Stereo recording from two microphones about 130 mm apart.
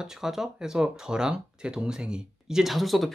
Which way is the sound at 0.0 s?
5° right (ahead or behind).